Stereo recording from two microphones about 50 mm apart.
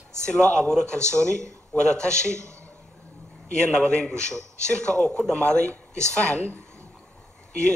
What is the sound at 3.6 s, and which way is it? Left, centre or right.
Speech, centre.